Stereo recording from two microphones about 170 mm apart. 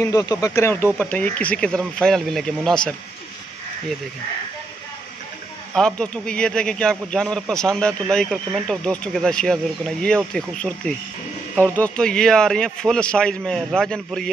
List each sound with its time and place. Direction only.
0.0 s speech: 20° left (ahead or behind); by 2.9 s 5° left (ahead or behind)
5.8 s speech: 5° left (ahead or behind)